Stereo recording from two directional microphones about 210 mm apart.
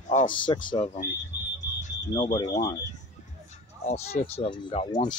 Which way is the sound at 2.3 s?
15° left (ahead or behind).